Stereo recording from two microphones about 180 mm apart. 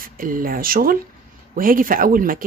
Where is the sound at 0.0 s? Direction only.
50° right (ahead or behind).